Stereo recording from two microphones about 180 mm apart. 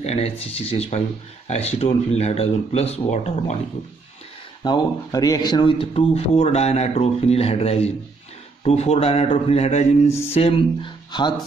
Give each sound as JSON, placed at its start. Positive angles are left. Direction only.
{"t": 0.0, "sound": "speech", "side_deg": 35}
{"t": 4.6, "sound": "speech", "side_deg": 20}